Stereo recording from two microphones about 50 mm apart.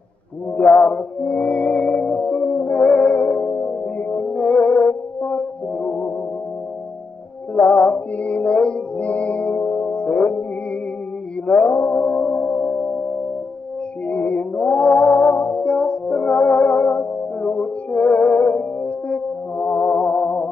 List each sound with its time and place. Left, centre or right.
0.6 s music: centre
7.5 s mantra: left
11.4 s music: left
12.0 s music: left
12.4 s singing bowl: left
14.0 s music: left